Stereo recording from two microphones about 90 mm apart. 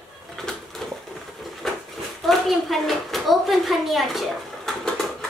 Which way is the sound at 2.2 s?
Centre (ahead or behind).